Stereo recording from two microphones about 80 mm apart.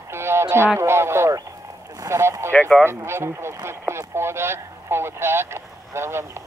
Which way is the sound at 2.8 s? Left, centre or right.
Right.